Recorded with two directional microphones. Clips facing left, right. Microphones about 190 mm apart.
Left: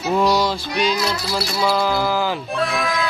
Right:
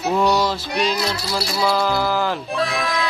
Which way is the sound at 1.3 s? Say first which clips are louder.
Even; centre (ahead or behind).